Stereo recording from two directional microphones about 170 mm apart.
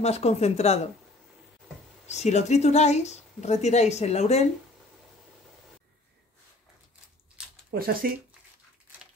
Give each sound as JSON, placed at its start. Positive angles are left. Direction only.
{"t": 0.0, "sound": "speech", "side_deg": 40}
{"t": 2.0, "sound": "speech", "side_deg": 40}
{"t": 7.4, "sound": "a sound", "side_deg": -5}
{"t": 7.7, "sound": "speech", "side_deg": -60}